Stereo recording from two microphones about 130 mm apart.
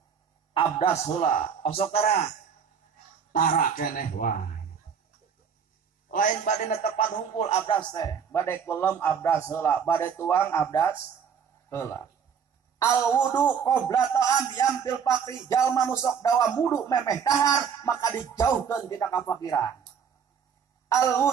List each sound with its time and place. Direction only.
0.6 s speech: 45° left (ahead or behind)
3.3 s speech: 90° left
6.0 s a man's voice: 85° left; by 7.8 s 45° left (ahead or behind)
7.9 s speech: 30° left (ahead or behind)
20.9 s speech: 20° left (ahead or behind)